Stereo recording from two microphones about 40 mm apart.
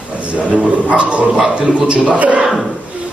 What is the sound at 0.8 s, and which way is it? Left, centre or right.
Speech, right.